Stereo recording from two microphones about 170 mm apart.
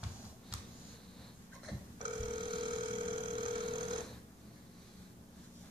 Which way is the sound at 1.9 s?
25° right (ahead or behind).